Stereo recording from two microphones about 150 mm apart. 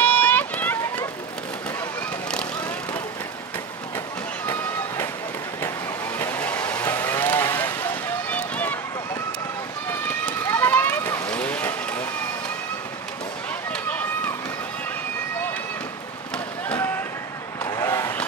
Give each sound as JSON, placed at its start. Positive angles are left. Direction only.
{"t": 0.0, "sound": "run", "side_deg": 10}
{"t": 4.5, "sound": "run", "side_deg": 15}
{"t": 6.1, "sound": "vehicle", "side_deg": 10}
{"t": 8.3, "sound": "run", "side_deg": 10}
{"t": 13.7, "sound": "run", "side_deg": 10}
{"t": 16.6, "sound": "fireworks", "side_deg": 10}
{"t": 17.6, "sound": "vehicle", "side_deg": 20}